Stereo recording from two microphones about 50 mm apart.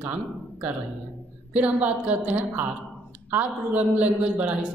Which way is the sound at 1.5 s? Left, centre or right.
Right.